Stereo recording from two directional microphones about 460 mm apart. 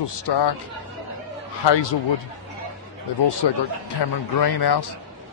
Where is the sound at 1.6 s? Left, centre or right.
Left.